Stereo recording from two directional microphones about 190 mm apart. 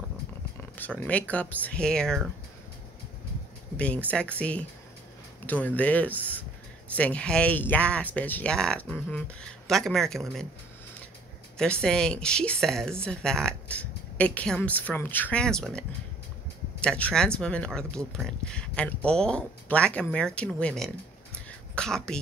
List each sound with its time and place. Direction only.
0.7 s speech: 10° left (ahead or behind)
3.7 s speech: 5° left (ahead or behind)
11.5 s speech: 5° left (ahead or behind)
16.8 s speech: 5° left (ahead or behind)